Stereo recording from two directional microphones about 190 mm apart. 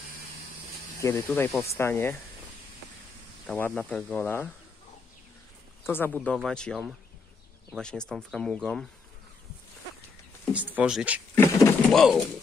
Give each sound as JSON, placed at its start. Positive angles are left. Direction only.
{"t": 1.0, "sound": "speech", "side_deg": 15}
{"t": 3.5, "sound": "speech", "side_deg": 10}
{"t": 5.9, "sound": "speech", "side_deg": 10}
{"t": 10.5, "sound": "speech", "side_deg": -10}
{"t": 11.3, "sound": "vehicle", "side_deg": 10}
{"t": 11.9, "sound": "speech", "side_deg": 0}